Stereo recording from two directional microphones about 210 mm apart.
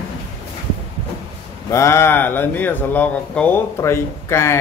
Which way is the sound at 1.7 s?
15° left (ahead or behind).